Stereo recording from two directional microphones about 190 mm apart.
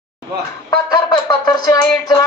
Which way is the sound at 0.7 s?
20° left (ahead or behind).